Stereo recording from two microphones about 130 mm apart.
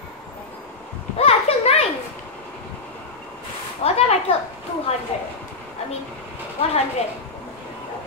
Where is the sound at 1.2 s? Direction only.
50° left (ahead or behind).